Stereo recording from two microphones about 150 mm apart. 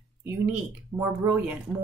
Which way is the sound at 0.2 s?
10° right (ahead or behind).